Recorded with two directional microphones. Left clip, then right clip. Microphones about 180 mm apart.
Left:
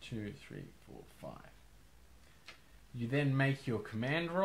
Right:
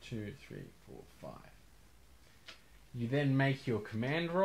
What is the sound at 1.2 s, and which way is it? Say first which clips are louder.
Speech: even; 20° right (ahead or behind).